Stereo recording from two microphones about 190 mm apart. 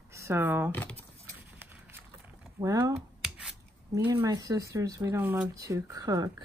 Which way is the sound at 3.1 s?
5° right (ahead or behind).